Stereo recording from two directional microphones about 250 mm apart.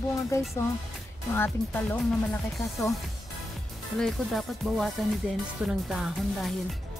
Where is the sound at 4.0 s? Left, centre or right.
Centre.